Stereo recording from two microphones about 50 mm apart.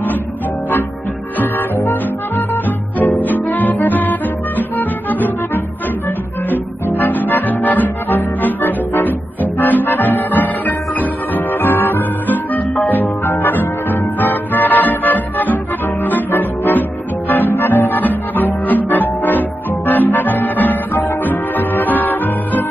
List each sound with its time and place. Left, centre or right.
1.4 s music: left
11.6 s music: left